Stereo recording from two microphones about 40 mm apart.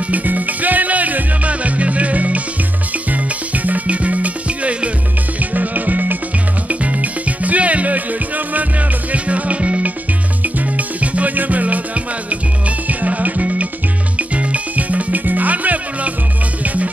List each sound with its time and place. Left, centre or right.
0.1 s music: right